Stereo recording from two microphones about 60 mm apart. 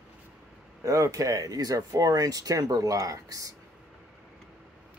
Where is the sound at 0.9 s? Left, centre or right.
Right.